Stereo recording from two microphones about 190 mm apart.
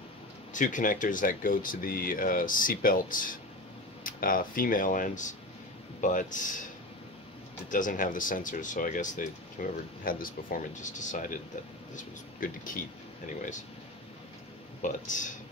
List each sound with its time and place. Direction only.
0.5 s speech: 45° left (ahead or behind)
7.7 s speech: 45° left (ahead or behind)
14.8 s speech: 40° left (ahead or behind)